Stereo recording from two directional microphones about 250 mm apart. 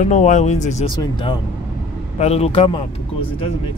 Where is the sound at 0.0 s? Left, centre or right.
Left.